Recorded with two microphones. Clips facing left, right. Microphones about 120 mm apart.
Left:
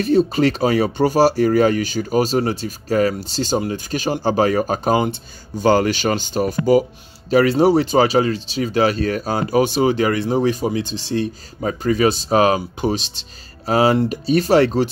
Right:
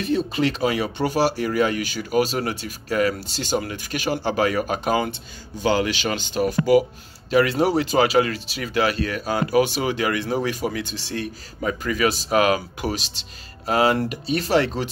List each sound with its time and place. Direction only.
0.0 s speech: 40° left (ahead or behind)